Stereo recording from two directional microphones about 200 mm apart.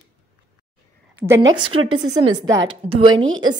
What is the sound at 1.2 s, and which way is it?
Speech, 15° right (ahead or behind).